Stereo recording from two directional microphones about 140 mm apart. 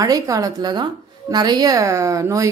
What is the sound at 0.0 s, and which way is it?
Speech, 25° right (ahead or behind).